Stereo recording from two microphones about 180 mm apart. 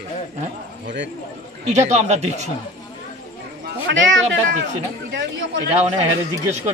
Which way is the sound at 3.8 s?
85° right.